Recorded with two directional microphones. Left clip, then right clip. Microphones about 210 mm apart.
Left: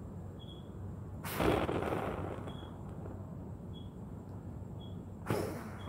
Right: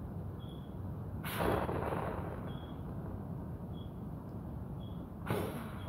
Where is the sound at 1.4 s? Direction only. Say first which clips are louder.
Left 3 dB; 35° left (ahead or behind).